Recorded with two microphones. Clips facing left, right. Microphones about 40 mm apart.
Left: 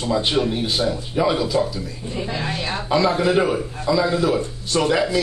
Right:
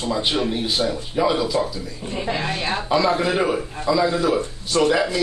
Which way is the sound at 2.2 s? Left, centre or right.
Right.